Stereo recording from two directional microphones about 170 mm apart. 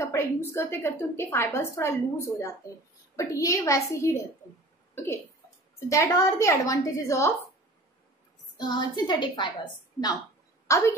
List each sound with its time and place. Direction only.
0.0 s a woman's voice: 15° left (ahead or behind)
8.5 s a woman's voice: 25° left (ahead or behind)
10.7 s speech: 20° left (ahead or behind)